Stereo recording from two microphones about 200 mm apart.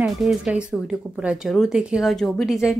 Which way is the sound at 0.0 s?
Centre (ahead or behind).